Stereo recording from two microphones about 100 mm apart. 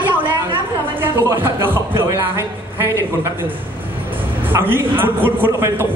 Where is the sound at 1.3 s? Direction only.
20° right (ahead or behind).